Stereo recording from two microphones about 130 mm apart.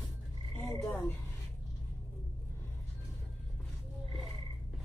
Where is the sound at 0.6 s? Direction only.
15° left (ahead or behind).